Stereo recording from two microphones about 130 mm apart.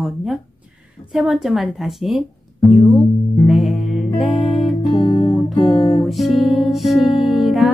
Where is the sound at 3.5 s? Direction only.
Centre (ahead or behind).